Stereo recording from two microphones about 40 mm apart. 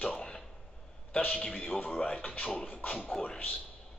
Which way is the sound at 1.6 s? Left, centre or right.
Left.